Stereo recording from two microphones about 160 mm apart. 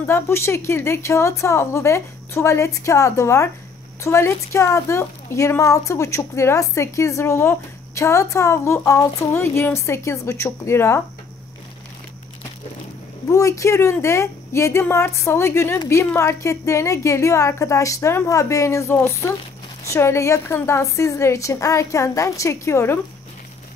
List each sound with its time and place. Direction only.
0.0 s a woman's voice: 15° left (ahead or behind)
13.3 s a woman's voice: 20° left (ahead or behind)